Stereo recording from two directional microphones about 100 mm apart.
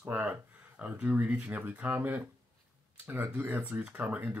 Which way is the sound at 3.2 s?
15° right (ahead or behind).